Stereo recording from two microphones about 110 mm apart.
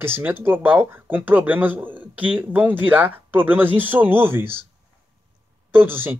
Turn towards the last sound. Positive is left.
turn(degrees=-20)  # may be behind; listen again after turning